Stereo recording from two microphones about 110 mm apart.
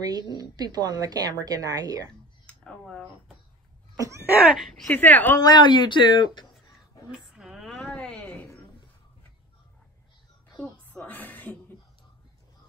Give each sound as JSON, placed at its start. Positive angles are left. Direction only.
{"t": 0.0, "sound": "a woman's voice", "side_deg": -35}
{"t": 2.8, "sound": "speech", "side_deg": 0}
{"t": 4.0, "sound": "cough", "side_deg": -25}
{"t": 4.3, "sound": "speech", "side_deg": -10}
{"t": 4.6, "sound": "speech", "side_deg": 0}
{"t": 4.9, "sound": "speech", "side_deg": 15}
{"t": 5.4, "sound": "speech", "side_deg": 40}
{"t": 7.3, "sound": "a sound", "side_deg": -5}
{"t": 7.8, "sound": "a sound", "side_deg": 10}
{"t": 10.6, "sound": "music", "side_deg": 15}